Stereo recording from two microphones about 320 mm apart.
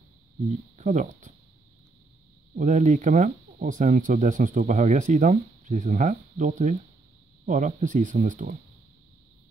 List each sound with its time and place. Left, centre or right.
0.5 s speech: right
2.5 s speech: right